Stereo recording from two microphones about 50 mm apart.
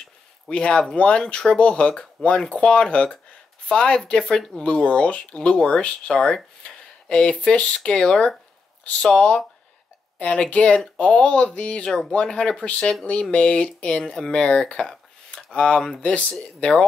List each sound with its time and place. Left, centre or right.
0.5 s speech: left
10.1 s speech: left